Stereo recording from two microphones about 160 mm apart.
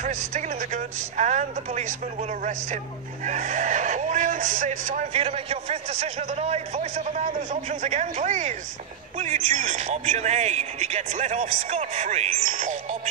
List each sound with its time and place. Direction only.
0.0 s speech: 50° right (ahead or behind)
3.3 s speech: 50° right (ahead or behind)
5.1 s speech: 40° right (ahead or behind)